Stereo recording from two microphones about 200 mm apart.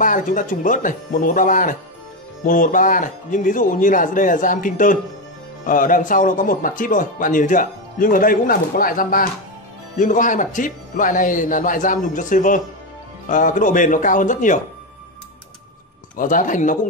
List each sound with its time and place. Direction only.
0.0 s speech: 40° left (ahead or behind)
16.2 s speech: 40° left (ahead or behind)